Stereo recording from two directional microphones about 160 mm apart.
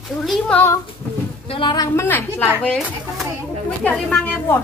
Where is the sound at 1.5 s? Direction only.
30° left (ahead or behind).